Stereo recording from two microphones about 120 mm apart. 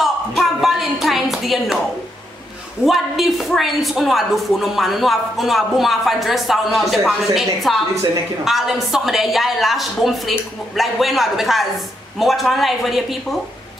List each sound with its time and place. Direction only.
0.0 s a sound: centre (ahead or behind)
2.8 s a woman's voice: centre (ahead or behind)
7.9 s a woman's voice: 30° right (ahead or behind)
8.5 s a woman's voice: 5° right (ahead or behind)